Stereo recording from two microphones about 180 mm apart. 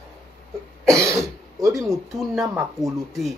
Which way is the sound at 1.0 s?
15° right (ahead or behind).